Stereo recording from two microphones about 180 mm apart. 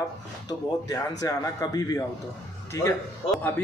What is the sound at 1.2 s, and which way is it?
Speech, 20° left (ahead or behind).